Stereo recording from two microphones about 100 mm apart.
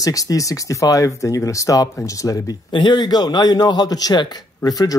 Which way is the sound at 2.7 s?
50° left (ahead or behind).